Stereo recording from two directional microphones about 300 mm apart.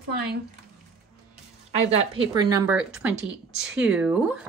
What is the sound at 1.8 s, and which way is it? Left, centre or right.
Speech, centre.